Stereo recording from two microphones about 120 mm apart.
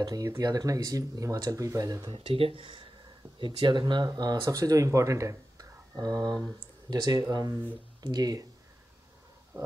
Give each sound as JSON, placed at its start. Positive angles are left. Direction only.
{"t": 0.0, "sound": "speech", "side_deg": -30}
{"t": 2.1, "sound": "speech", "side_deg": -50}